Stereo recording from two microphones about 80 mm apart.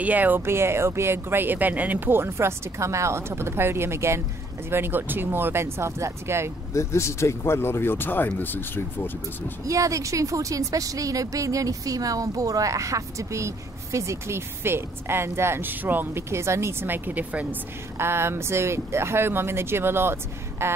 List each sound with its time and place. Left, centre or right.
0.0 s speech: right
6.7 s speech: left
9.7 s a woman's voice: right; by 17.6 s centre
17.9 s speech: right